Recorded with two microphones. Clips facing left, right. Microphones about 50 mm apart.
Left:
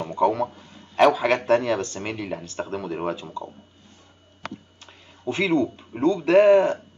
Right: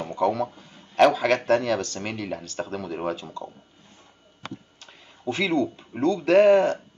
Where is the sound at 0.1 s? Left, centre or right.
Left.